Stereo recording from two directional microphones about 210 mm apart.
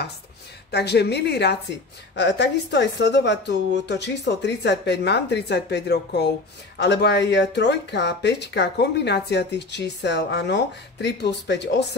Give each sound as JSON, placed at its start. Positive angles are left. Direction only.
{"t": 0.7, "sound": "speech", "side_deg": 50}